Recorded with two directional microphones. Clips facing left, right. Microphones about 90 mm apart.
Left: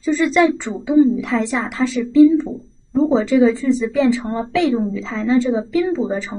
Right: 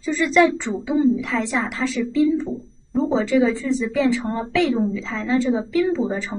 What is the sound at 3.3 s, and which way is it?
Speech, 15° left (ahead or behind).